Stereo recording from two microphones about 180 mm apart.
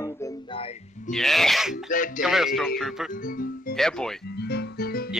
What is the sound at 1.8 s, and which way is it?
Speech, 50° left (ahead or behind).